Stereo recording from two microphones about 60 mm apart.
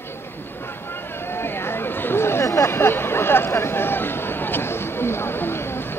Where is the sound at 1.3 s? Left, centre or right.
Left.